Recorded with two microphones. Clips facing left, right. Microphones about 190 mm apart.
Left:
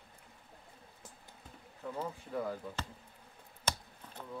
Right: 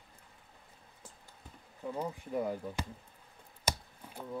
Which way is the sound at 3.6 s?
10° right (ahead or behind).